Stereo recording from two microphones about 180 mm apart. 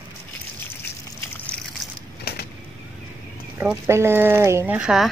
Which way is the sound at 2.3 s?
60° left (ahead or behind).